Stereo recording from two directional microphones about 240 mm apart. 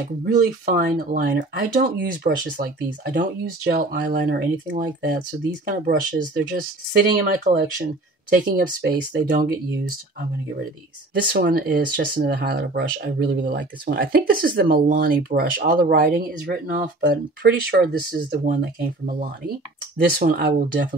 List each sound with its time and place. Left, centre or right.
0.2 s speech: right
11.3 s speech: right